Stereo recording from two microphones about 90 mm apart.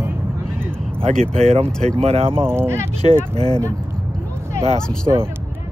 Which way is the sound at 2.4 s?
25° right (ahead or behind).